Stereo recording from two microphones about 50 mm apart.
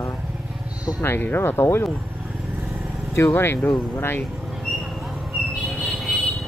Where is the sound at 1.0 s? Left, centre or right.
Left.